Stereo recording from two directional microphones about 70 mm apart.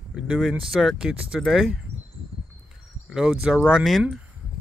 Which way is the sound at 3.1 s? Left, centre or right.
Centre.